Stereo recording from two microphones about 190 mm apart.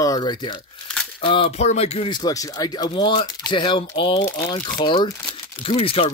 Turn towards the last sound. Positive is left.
turn(degrees=30)  # may be behind; listen again after turning